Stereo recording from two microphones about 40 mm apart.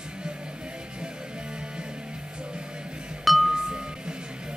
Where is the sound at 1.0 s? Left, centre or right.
Right.